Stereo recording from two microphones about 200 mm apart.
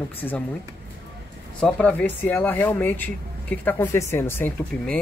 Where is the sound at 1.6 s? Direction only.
5° left (ahead or behind).